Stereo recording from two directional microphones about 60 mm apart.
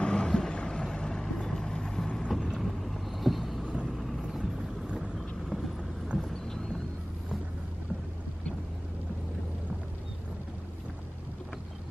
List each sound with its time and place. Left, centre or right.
0.0 s vehicle: centre
2.4 s vehicle: centre
3.6 s vehicle: centre
3.9 s vehicle: centre
5.1 s vehicle: centre